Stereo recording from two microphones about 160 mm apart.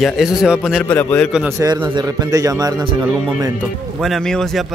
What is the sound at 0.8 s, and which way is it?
Speech, 10° left (ahead or behind).